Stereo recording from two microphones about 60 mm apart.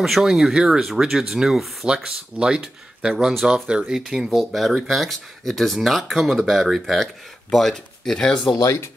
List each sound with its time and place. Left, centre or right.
0.2 s speech: centre
2.0 s speech: centre
8.5 s speech: left